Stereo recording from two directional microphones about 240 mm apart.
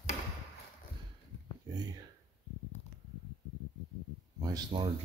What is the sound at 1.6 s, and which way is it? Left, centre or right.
Speech, centre.